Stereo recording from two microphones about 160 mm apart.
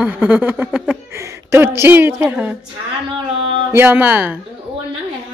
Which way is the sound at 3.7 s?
15° right (ahead or behind).